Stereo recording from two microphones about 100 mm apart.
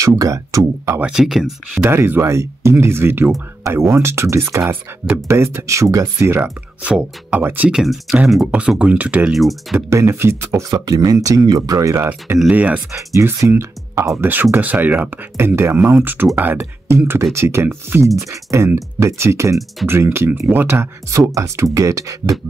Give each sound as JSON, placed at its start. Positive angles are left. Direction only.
{"t": 0.0, "sound": "speech", "side_deg": -35}
{"t": 0.9, "sound": "speech", "side_deg": -10}
{"t": 1.8, "sound": "speech", "side_deg": -25}
{"t": 6.8, "sound": "speech", "side_deg": -10}
{"t": 7.7, "sound": "speech", "side_deg": 0}
{"t": 9.3, "sound": "speech", "side_deg": 0}
{"t": 9.8, "sound": "speech", "side_deg": -30}
{"t": 10.7, "sound": "speech", "side_deg": -45}
{"t": 12.4, "sound": "speech", "side_deg": -15}
{"t": 12.9, "sound": "speech", "side_deg": -30}
{"t": 14.1, "sound": "speech", "side_deg": -20}